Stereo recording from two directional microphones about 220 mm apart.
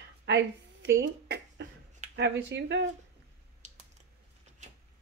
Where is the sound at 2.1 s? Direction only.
50° right (ahead or behind).